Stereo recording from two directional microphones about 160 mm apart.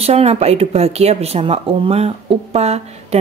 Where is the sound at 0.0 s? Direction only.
40° right (ahead or behind).